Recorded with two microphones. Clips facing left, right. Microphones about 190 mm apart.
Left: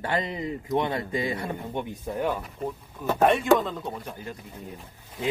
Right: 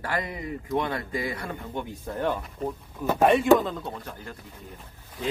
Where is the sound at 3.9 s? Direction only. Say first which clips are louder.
Left 2 dB; 15° left (ahead or behind).